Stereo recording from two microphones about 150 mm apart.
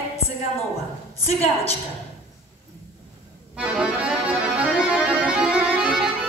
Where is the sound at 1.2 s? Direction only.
45° left (ahead or behind).